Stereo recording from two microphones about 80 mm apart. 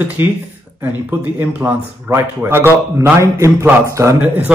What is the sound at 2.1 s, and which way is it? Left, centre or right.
Speech, right.